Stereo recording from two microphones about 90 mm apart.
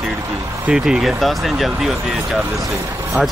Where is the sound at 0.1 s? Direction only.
35° right (ahead or behind).